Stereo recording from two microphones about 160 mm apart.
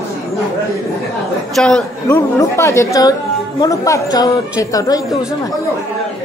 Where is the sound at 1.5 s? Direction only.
5° left (ahead or behind); by 5.5 s 25° left (ahead or behind).